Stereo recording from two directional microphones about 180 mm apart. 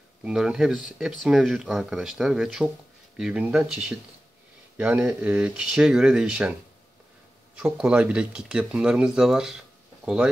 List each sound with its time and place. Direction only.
0.2 s speech: 5° right (ahead or behind)
7.5 s speech: 5° right (ahead or behind)